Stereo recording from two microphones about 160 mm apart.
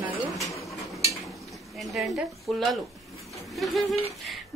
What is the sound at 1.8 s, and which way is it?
Speech, centre (ahead or behind).